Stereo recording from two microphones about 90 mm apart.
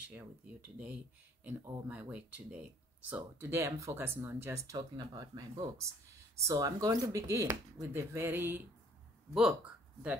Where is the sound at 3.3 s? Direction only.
30° right (ahead or behind).